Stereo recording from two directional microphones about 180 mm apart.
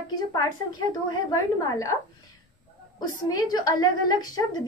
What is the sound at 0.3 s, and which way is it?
A woman's voice, 25° left (ahead or behind).